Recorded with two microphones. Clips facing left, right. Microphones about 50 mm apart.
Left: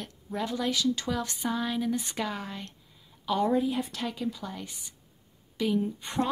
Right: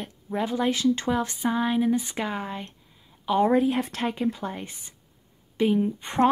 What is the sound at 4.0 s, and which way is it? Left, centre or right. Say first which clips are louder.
A woman's voice: right 6 dB; right.